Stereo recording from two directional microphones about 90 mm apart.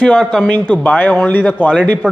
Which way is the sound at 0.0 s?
10° left (ahead or behind).